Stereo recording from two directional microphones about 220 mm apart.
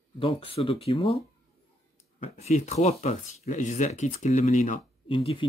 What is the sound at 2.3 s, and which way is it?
Speech, 30° left (ahead or behind).